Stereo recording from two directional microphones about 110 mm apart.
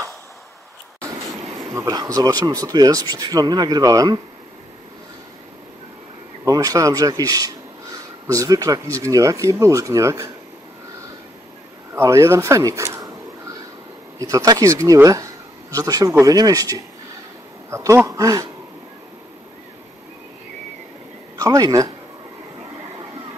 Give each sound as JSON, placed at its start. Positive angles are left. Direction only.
{"t": 1.7, "sound": "speech", "side_deg": -30}
{"t": 6.4, "sound": "a man's voice", "side_deg": -35}
{"t": 11.9, "sound": "a sound", "side_deg": -25}
{"t": 14.2, "sound": "a man's voice", "side_deg": -30}
{"t": 21.4, "sound": "speech", "side_deg": -35}